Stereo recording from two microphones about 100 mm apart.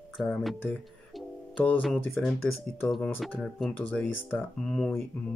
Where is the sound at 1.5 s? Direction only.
15° left (ahead or behind).